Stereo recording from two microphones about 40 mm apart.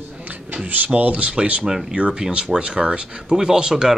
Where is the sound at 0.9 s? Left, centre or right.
Right.